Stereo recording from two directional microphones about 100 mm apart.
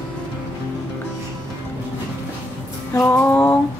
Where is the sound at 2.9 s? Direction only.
25° left (ahead or behind).